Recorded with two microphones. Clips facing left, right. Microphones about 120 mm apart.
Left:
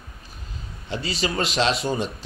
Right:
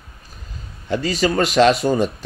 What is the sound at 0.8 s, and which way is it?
Speech, 50° right (ahead or behind).